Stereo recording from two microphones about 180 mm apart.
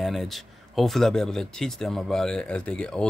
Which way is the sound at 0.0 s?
Centre (ahead or behind).